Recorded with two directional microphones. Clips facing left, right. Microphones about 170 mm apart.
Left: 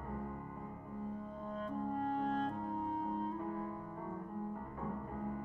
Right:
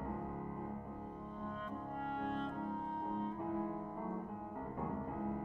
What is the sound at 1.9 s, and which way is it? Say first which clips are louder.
Music: left 3 dB; 40° left (ahead or behind).